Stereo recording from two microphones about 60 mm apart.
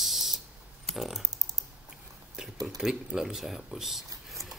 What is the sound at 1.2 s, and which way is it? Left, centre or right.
Typing, right.